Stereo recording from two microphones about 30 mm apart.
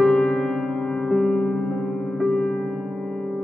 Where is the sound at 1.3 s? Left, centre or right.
Left.